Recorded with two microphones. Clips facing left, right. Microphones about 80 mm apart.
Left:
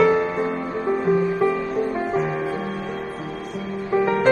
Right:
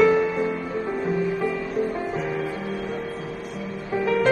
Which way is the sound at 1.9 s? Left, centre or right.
Left.